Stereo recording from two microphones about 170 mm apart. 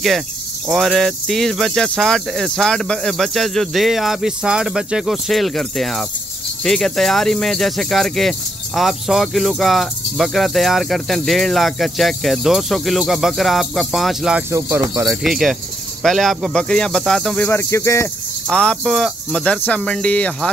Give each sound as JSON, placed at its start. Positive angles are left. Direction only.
{"t": 0.7, "sound": "speech", "side_deg": 0}
{"t": 14.5, "sound": "speech", "side_deg": -15}
{"t": 15.0, "sound": "speech", "side_deg": 0}
{"t": 18.5, "sound": "speech", "side_deg": 5}